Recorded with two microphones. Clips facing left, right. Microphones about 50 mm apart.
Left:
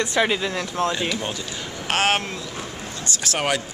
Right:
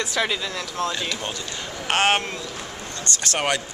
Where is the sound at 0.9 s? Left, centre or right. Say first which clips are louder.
Left 3 dB; centre.